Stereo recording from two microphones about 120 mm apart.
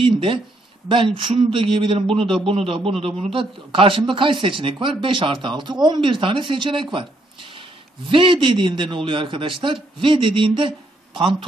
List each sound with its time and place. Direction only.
0.0 s speech: 45° right (ahead or behind)